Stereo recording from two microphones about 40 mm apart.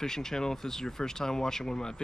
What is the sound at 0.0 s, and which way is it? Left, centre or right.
Speech, centre.